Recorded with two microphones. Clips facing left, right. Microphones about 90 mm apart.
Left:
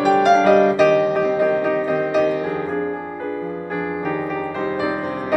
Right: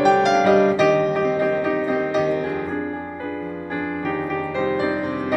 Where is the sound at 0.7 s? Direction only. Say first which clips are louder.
Left 2 dB; 5° left (ahead or behind).